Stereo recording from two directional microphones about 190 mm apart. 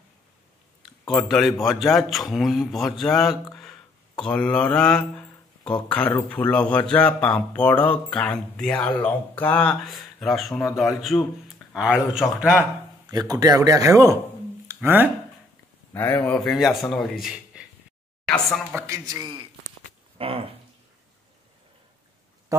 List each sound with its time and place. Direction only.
1.0 s speech: centre (ahead or behind)
13.1 s speech: 20° right (ahead or behind)
15.9 s speech: 10° left (ahead or behind)
18.7 s speech: 15° right (ahead or behind)
20.2 s a sound: 30° right (ahead or behind)
22.5 s speech: 15° right (ahead or behind)